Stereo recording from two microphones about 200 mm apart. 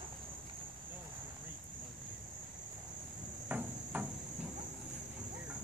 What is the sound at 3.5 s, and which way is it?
Hammer, 10° right (ahead or behind).